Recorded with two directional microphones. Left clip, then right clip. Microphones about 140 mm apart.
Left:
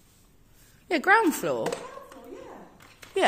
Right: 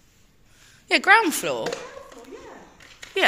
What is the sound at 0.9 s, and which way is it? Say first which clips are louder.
Speech: right 4 dB; 35° left (ahead or behind).